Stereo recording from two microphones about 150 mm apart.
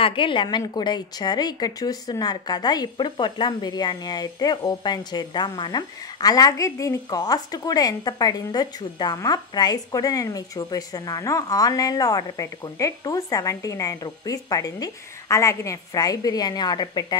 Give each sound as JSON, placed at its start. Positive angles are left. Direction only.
{"t": 0.0, "sound": "a woman's voice", "side_deg": 35}